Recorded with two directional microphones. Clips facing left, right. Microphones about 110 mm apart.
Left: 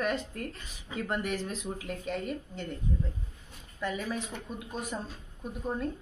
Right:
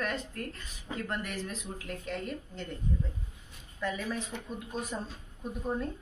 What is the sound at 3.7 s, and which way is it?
Speech, 10° left (ahead or behind).